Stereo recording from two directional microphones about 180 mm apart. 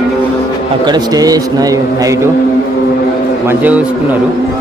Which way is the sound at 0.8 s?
20° right (ahead or behind).